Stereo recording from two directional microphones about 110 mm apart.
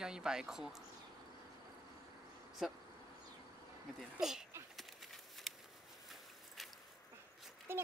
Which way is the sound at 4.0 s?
5° right (ahead or behind).